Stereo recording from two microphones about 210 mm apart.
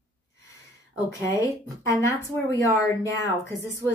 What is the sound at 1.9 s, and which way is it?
A woman's voice, 15° left (ahead or behind).